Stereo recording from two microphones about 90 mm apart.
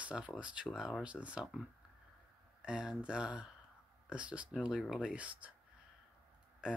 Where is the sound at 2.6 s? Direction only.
10° right (ahead or behind).